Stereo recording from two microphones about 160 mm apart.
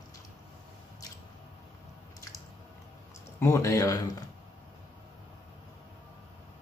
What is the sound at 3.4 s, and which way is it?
Speech, 20° left (ahead or behind).